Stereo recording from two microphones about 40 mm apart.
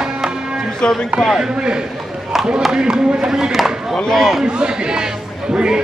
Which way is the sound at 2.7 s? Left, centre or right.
Right.